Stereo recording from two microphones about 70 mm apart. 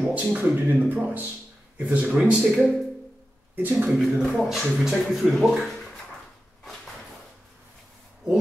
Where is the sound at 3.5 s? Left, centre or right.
Right.